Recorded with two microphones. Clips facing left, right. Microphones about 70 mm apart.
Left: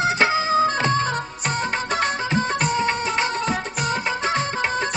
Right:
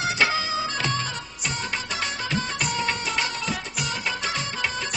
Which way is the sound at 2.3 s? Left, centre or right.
Left.